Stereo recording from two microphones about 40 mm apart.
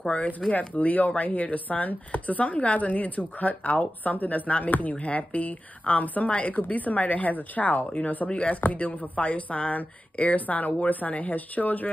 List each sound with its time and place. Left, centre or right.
0.5 s speech: left
8.3 s speech: left